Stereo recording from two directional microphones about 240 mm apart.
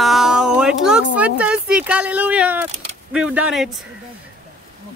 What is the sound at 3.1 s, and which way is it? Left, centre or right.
Speech, centre.